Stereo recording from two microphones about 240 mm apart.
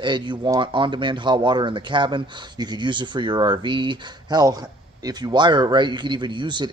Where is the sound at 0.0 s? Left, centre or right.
Centre.